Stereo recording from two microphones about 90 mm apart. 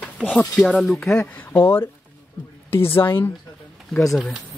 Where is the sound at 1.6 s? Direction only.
30° left (ahead or behind).